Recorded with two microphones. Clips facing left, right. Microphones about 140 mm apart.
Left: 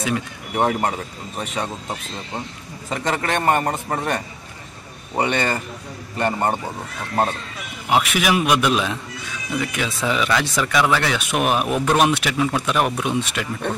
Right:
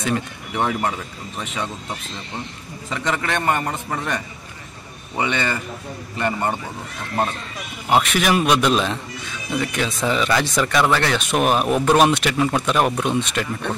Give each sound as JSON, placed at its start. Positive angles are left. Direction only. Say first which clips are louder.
{"t": 0.7, "sound": "a man's voice", "louder": "left 1 dB", "side_deg": 40}
{"t": 2.9, "sound": "a man's voice", "louder": "left 1 dB", "side_deg": 40}
{"t": 7.9, "sound": "speech", "louder": "right 1 dB", "side_deg": 5}